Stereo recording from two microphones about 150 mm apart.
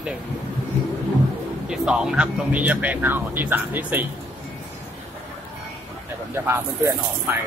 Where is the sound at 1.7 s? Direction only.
5° right (ahead or behind).